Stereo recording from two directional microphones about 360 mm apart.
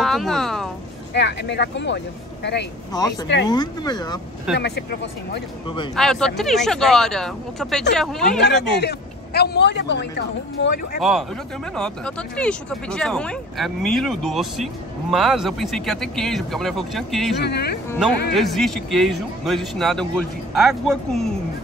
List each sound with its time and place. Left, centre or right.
0.0 s speech: centre
1.1 s speech: left
3.4 s speech: centre
4.6 s speech: left
5.9 s speech: centre
8.7 s speech: left
11.0 s speech: centre
17.4 s speech: left
18.3 s speech: centre